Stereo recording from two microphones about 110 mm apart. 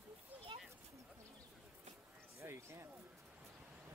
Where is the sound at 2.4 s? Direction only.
25° right (ahead or behind).